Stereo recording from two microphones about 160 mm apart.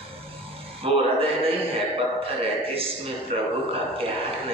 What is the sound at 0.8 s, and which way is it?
Speech, 35° right (ahead or behind).